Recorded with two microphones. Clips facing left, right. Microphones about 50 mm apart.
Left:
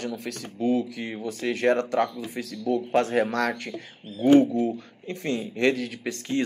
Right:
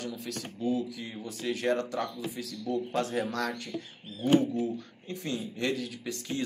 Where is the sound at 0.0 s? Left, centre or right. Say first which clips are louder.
Left 5 dB; left.